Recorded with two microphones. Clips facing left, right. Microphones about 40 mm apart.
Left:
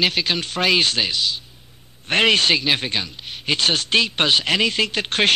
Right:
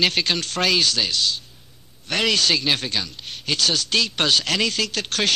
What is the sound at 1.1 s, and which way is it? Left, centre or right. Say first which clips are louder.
Speech: even; centre.